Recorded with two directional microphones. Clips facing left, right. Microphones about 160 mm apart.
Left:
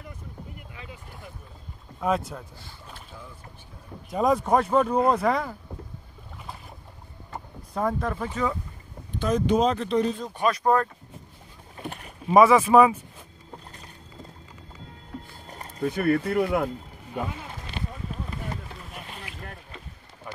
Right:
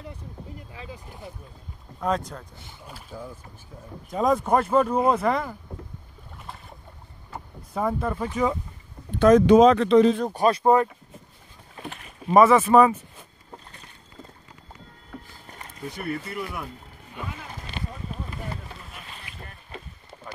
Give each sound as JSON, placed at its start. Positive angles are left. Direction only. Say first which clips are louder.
{"t": 2.0, "sound": "speech", "louder": "left 1 dB", "side_deg": 5}
{"t": 4.1, "sound": "speech", "louder": "even", "side_deg": 0}
{"t": 7.7, "sound": "speech", "louder": "right 1 dB", "side_deg": -5}
{"t": 9.2, "sound": "speech", "louder": "right 8 dB", "side_deg": -90}
{"t": 10.3, "sound": "speech", "louder": "right 4 dB", "side_deg": -35}
{"t": 10.6, "sound": "speech", "louder": "right 3 dB", "side_deg": -20}
{"t": 12.3, "sound": "speech", "louder": "even", "side_deg": 5}
{"t": 15.8, "sound": "speech", "louder": "left 9 dB", "side_deg": 65}
{"t": 19.2, "sound": "boat", "louder": "left 4 dB", "side_deg": 75}